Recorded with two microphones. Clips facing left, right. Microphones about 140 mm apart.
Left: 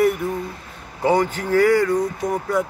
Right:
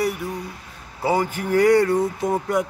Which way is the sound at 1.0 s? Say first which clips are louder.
Left 3 dB; 10° right (ahead or behind).